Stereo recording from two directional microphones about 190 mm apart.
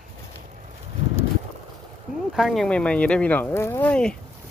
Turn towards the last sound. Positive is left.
turn(degrees=5)  # may be behind; listen again after turning